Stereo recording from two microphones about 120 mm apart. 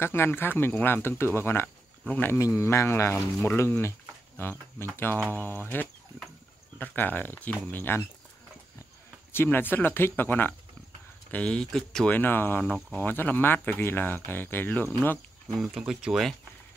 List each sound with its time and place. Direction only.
0.0 s speech: 20° left (ahead or behind)
9.3 s speech: 20° left (ahead or behind)
12.2 s speech: 15° left (ahead or behind)
15.6 s speech: 5° right (ahead or behind)